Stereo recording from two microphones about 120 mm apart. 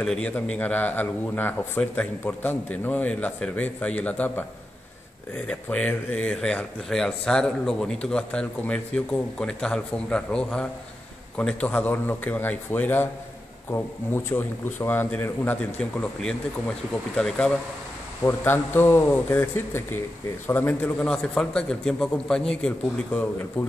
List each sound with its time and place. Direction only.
0.0 s speech: 10° left (ahead or behind)
18.2 s a man's voice: 20° left (ahead or behind)